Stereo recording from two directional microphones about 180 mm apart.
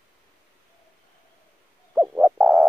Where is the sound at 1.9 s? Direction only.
5° right (ahead or behind).